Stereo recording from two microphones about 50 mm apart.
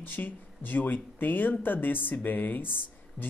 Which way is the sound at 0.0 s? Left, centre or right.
Left.